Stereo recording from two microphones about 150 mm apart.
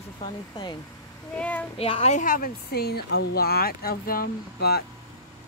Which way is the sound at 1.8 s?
40° left (ahead or behind).